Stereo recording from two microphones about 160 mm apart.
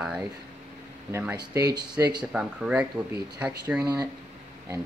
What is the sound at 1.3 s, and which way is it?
Speech, 20° right (ahead or behind).